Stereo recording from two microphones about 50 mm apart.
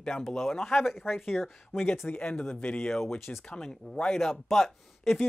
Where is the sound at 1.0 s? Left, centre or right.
Left.